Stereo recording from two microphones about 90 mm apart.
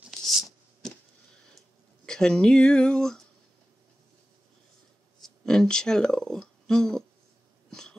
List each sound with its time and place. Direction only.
0.1 s a sound: centre (ahead or behind)
2.0 s speech: 10° left (ahead or behind)
5.2 s speech: 5° left (ahead or behind)
7.7 s cough: 5° left (ahead or behind)